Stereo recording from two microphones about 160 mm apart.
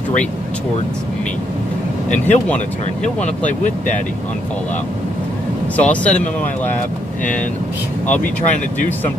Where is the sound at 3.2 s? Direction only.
50° left (ahead or behind).